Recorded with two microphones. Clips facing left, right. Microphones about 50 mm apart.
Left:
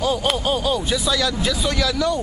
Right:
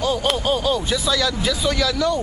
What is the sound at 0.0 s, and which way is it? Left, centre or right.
Speech, centre.